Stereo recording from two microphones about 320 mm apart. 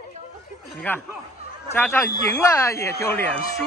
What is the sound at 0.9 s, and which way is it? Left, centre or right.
Speech, centre.